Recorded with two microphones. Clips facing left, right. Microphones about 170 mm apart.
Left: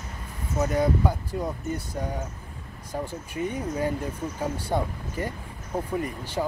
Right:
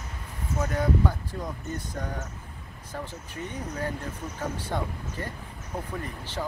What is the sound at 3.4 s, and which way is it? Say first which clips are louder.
Speech: left 6 dB; 15° left (ahead or behind).